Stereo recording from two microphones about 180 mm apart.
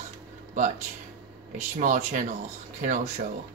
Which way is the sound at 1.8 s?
45° right (ahead or behind).